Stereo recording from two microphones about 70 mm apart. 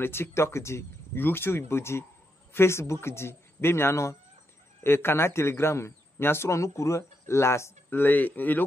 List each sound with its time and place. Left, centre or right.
0.0 s a man's voice: left